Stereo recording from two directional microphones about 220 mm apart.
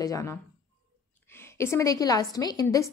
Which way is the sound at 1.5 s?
15° left (ahead or behind).